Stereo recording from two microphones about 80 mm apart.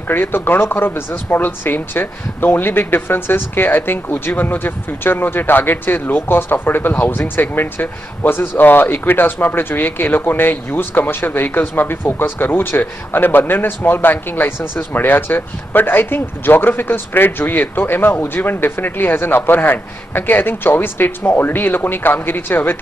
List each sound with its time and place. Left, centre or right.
0.1 s speech: left